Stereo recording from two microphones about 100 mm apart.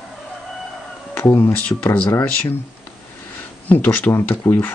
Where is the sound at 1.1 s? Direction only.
20° left (ahead or behind).